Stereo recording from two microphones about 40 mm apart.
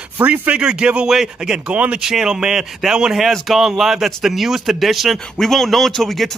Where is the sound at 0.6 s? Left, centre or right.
Right.